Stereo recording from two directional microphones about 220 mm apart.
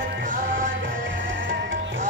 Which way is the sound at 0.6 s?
55° right (ahead or behind).